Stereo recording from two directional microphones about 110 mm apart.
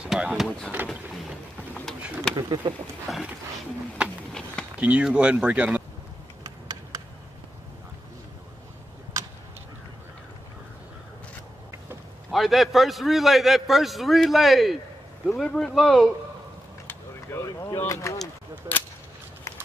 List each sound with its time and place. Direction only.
0.0 s speech: 5° right (ahead or behind)
2.3 s speech: 40° right (ahead or behind)
3.1 s a man's voice: centre (ahead or behind)
4.3 s a sound: 5° left (ahead or behind)
4.7 s speech: 10° right (ahead or behind)
6.4 s a sound: 35° right (ahead or behind)
12.3 s a man's voice: centre (ahead or behind)
16.8 s speech: 25° left (ahead or behind)
18.7 s speech: 35° right (ahead or behind)
19.5 s run: 30° left (ahead or behind)